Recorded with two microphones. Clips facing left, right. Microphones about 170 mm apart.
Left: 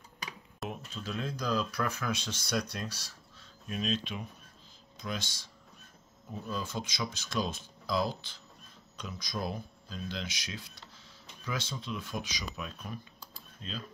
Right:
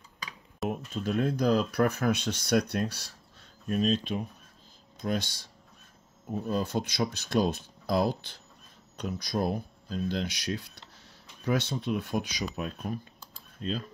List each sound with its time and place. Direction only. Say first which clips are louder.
0.7 s speech: right 9 dB; 50° right (ahead or behind)
5.0 s speech: right 8 dB; 35° right (ahead or behind)
6.4 s speech: right 7 dB; 55° right (ahead or behind)
12.5 s speech: right 7 dB; 45° right (ahead or behind)